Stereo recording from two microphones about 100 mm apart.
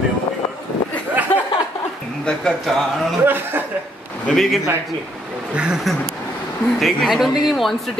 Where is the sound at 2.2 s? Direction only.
5° left (ahead or behind).